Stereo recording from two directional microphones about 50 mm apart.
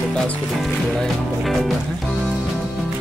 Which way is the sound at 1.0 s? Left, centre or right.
Centre.